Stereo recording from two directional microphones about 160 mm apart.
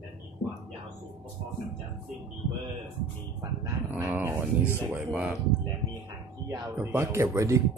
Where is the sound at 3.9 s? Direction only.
15° right (ahead or behind).